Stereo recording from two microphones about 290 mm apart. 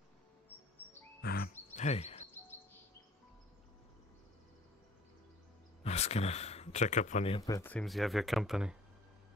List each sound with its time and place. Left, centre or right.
1.2 s music: left
5.9 s speech: left; by 8.7 s centre